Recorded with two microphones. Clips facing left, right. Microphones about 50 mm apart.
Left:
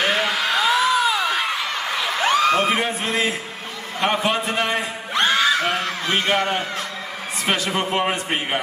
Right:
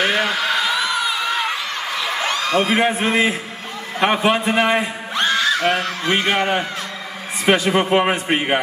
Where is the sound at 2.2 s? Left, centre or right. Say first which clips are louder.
Left 3 dB; centre.